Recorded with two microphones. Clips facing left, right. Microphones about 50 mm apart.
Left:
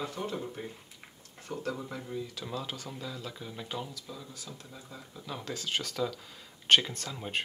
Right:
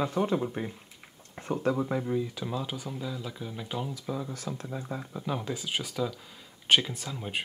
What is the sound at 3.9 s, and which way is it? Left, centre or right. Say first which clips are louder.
Speech: right 10 dB; right.